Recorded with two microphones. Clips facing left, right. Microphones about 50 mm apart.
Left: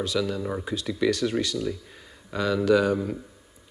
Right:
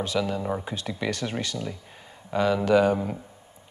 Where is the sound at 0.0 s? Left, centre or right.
Centre.